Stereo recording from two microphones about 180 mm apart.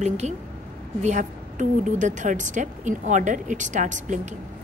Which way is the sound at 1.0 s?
45° right (ahead or behind).